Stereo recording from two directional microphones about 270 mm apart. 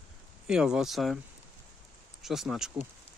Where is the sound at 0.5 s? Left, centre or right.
Centre.